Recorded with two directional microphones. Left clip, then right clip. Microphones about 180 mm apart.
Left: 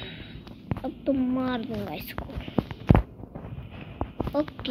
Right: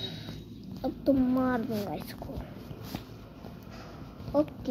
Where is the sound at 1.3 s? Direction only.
10° left (ahead or behind).